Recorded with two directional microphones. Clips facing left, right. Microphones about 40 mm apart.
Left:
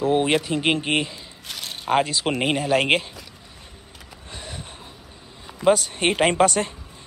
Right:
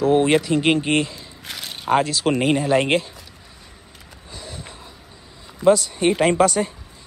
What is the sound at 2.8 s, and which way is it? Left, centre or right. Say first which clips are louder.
Speech: right 1 dB; left.